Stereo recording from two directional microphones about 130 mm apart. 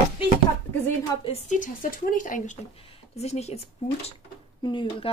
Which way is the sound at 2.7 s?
45° left (ahead or behind).